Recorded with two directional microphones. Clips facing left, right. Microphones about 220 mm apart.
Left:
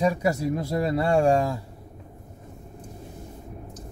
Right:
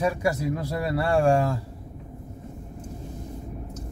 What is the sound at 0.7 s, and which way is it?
Speech, 20° left (ahead or behind).